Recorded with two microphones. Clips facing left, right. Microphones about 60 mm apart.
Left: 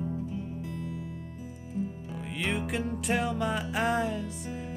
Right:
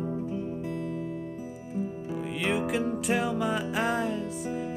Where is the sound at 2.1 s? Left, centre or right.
Centre.